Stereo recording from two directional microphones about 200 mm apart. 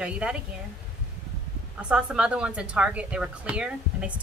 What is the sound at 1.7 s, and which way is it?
A woman's voice, 5° right (ahead or behind).